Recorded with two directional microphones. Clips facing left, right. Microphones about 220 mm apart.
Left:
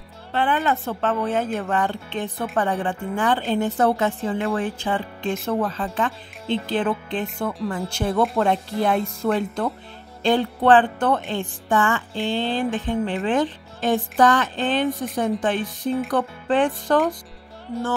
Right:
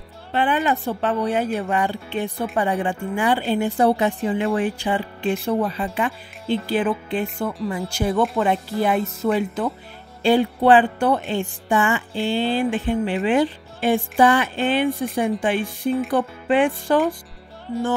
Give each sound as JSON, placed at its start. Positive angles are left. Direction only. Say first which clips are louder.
{"t": 0.3, "sound": "speech", "louder": "right 1 dB", "side_deg": -15}